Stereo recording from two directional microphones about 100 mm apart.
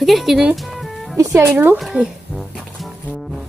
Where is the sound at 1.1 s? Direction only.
35° right (ahead or behind).